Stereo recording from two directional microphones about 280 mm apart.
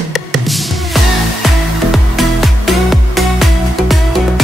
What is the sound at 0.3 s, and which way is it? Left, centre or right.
Music, centre.